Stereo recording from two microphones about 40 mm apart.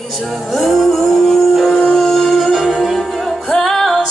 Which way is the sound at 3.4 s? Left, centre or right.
Centre.